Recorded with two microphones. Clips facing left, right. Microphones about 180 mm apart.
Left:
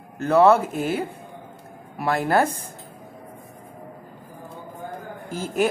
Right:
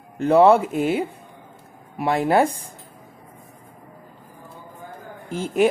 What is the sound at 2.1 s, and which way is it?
Speech, 15° right (ahead or behind).